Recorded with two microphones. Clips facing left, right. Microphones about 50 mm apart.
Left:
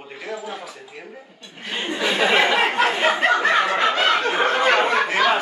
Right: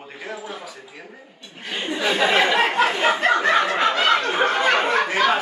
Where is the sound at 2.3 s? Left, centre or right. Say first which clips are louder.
Left 1 dB; centre.